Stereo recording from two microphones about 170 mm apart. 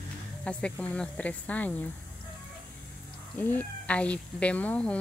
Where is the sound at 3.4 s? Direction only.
10° left (ahead or behind).